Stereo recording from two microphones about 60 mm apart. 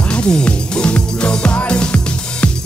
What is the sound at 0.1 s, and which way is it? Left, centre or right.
Music, centre.